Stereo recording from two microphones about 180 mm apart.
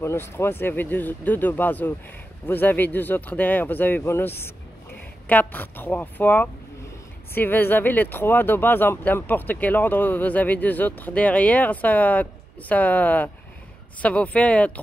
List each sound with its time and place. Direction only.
0.0 s speech: 15° left (ahead or behind)